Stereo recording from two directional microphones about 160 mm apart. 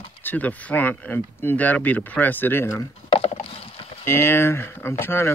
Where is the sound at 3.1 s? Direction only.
40° left (ahead or behind).